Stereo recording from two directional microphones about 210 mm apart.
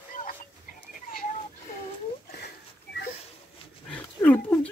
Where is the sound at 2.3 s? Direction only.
50° left (ahead or behind).